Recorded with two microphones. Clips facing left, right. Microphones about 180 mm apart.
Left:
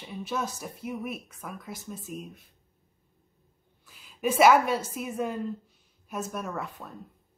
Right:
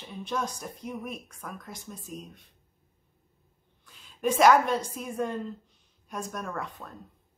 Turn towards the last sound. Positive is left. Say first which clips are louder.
# left 1 dB
turn(degrees=5)  # may be behind; listen again after turning